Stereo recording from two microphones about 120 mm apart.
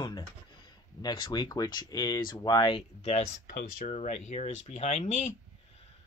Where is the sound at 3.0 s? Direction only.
60° left (ahead or behind).